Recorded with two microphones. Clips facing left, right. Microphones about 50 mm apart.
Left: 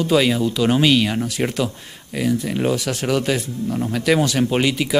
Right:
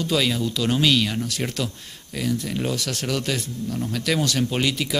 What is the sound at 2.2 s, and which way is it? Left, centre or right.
Speech, centre.